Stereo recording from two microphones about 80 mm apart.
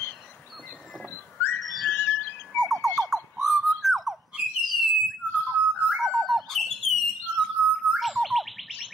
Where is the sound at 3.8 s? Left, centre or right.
Centre.